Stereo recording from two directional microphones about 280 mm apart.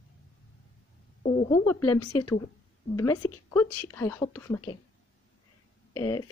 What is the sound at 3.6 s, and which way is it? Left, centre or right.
Speech, left.